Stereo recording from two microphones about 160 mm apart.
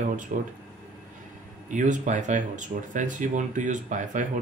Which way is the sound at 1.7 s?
50° right (ahead or behind).